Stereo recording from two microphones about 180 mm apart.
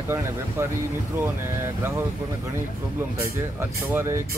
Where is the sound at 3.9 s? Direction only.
15° right (ahead or behind).